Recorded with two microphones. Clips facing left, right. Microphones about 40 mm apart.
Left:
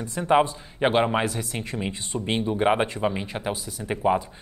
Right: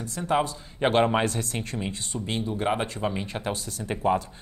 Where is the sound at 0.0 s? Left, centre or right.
Left.